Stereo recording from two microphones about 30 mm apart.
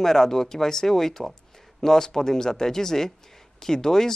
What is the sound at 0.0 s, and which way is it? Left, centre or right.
Speech, centre.